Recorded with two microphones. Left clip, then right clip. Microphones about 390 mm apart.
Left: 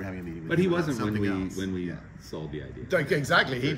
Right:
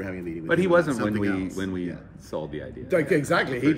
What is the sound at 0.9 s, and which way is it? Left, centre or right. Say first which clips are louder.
Speech: right 3 dB; right.